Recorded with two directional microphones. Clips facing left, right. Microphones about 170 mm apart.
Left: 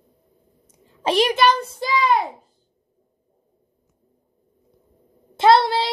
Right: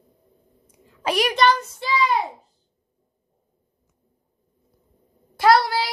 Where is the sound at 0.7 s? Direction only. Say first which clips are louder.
Left 3 dB; 25° left (ahead or behind).